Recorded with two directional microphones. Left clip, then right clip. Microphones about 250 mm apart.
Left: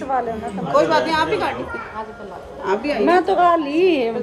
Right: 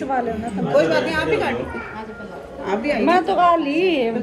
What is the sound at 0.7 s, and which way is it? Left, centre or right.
Speech, left.